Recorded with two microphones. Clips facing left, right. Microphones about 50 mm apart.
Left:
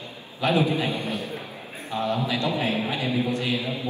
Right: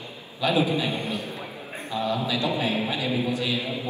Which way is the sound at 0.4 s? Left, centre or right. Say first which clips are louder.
Left 1 dB; left.